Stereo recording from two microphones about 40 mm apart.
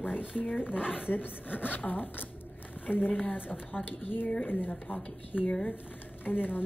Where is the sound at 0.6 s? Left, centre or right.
Left.